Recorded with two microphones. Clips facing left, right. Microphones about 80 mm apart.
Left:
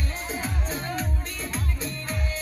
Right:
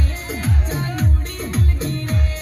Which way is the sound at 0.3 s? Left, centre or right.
Right.